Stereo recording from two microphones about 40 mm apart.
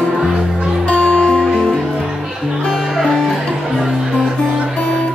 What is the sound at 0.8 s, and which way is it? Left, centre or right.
Music, left.